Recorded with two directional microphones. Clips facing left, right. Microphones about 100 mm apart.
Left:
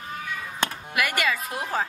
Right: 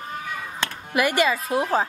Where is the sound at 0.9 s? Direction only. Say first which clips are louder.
Right 7 dB; 25° right (ahead or behind).